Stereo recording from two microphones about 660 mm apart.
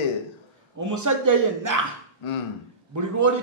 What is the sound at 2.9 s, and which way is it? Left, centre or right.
Speech, right.